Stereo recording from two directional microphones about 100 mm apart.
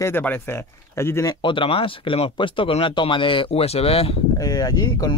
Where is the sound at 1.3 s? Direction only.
55° left (ahead or behind); by 4.2 s 80° left.